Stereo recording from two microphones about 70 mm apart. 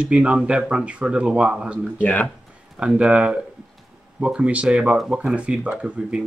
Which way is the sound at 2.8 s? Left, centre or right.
Centre.